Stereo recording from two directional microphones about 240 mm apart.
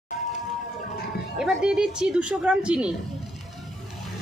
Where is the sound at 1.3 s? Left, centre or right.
Centre.